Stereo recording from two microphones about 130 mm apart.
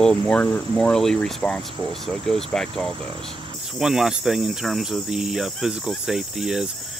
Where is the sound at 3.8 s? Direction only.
5° right (ahead or behind).